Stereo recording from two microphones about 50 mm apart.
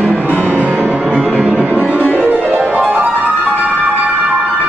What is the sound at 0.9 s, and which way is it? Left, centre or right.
Music, right.